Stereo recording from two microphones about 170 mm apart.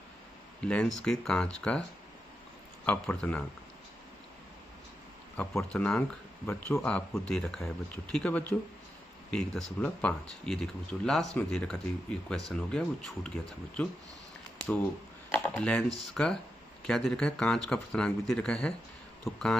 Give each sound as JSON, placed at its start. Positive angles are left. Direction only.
{"t": 0.7, "sound": "speech", "side_deg": 5}
{"t": 5.4, "sound": "speech", "side_deg": 15}
{"t": 15.3, "sound": "speech", "side_deg": 10}